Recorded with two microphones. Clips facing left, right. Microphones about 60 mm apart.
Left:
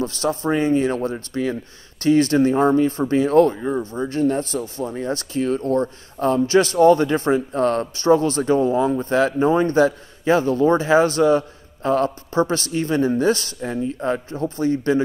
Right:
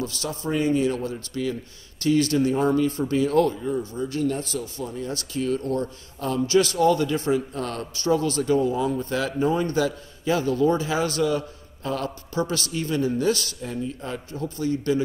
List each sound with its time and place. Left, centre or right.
0.0 s speech: left